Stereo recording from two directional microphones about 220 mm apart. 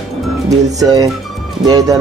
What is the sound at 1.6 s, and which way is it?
Speech, 15° right (ahead or behind).